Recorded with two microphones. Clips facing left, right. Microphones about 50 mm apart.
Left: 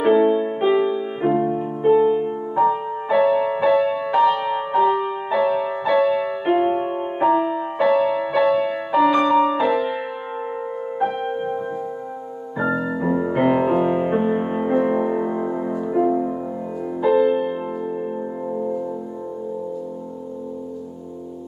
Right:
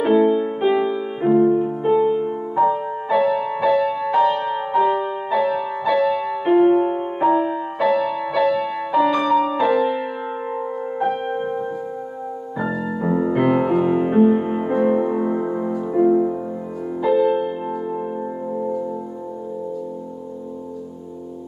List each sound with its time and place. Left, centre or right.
0.0 s music: centre
4.1 s music: centre
8.9 s music: centre
9.3 s music: centre
11.0 s music: centre
12.7 s music: centre
13.1 s music: centre
13.4 s music: centre
15.8 s music: centre